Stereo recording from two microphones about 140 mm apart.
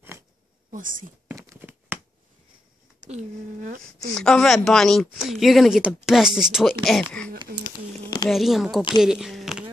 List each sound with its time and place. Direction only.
0.7 s speech: 70° right (ahead or behind)
1.3 s a sound: 20° right (ahead or behind)
3.1 s speech: 60° right (ahead or behind); by 4.1 s 75° right (ahead or behind)
4.1 s speech: 5° left (ahead or behind)
8.3 s speech: centre (ahead or behind)
9.0 s a sound: 5° right (ahead or behind)